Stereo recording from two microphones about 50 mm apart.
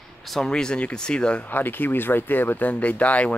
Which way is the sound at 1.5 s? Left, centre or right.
Left.